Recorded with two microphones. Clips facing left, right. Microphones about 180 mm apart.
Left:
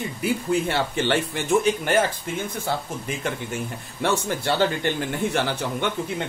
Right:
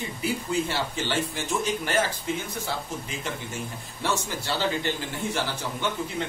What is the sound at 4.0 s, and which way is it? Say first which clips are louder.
A man's voice: left 5 dB; 60° left (ahead or behind).